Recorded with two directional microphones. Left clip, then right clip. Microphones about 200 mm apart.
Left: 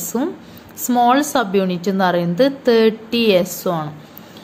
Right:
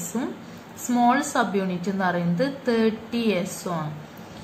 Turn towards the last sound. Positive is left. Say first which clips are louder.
# left 10 dB
turn(degrees=40)  # may be behind; listen again after turning